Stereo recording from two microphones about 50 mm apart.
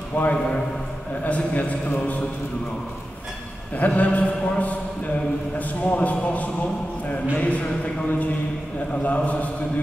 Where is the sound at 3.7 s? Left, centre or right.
Left.